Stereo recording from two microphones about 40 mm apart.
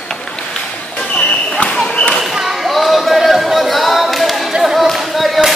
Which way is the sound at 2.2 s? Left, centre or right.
Centre.